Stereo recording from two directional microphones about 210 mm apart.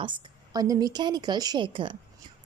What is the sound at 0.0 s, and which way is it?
A woman's voice, 20° right (ahead or behind).